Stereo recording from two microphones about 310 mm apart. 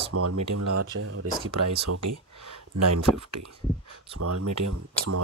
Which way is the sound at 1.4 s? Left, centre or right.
Right.